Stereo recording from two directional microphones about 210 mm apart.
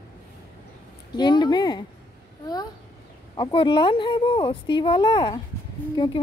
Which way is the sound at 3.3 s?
25° left (ahead or behind).